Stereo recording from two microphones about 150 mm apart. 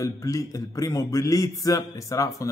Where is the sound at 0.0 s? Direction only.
20° left (ahead or behind).